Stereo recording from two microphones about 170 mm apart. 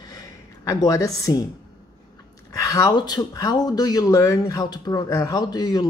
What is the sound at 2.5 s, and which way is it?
Speech, 20° left (ahead or behind).